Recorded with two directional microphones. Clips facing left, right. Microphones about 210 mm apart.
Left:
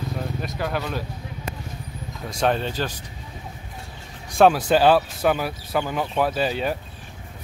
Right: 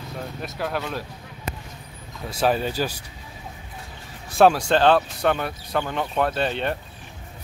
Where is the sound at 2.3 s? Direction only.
5° right (ahead or behind).